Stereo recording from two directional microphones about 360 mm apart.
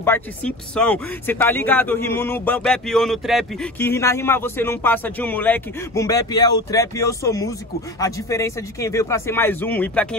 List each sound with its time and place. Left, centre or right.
0.0 s speech: centre